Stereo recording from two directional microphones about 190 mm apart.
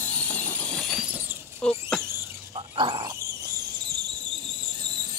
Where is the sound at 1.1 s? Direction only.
10° right (ahead or behind).